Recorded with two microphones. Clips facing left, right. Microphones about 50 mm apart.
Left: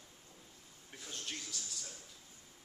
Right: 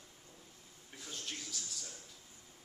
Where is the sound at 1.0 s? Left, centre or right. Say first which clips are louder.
Even; centre.